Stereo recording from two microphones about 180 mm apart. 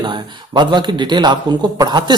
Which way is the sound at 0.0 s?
25° right (ahead or behind).